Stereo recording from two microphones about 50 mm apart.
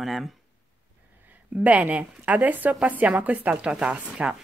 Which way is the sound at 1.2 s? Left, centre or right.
Right.